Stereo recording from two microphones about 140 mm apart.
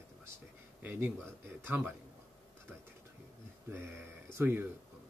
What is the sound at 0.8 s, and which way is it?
Speech, 15° right (ahead or behind).